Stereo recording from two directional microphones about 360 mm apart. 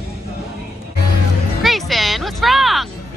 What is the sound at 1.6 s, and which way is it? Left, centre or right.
Music, centre.